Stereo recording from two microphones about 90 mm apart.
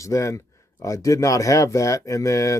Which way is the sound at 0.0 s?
35° left (ahead or behind).